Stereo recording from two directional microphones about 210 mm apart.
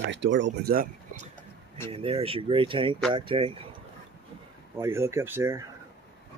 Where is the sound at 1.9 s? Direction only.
25° right (ahead or behind).